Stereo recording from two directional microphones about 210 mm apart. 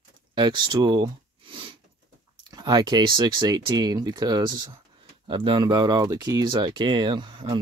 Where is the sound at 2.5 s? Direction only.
20° right (ahead or behind).